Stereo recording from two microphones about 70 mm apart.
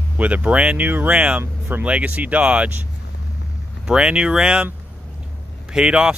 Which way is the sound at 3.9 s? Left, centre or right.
Centre.